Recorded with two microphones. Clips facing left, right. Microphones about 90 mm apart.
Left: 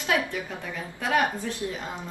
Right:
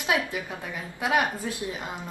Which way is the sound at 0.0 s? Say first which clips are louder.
Even; 15° right (ahead or behind).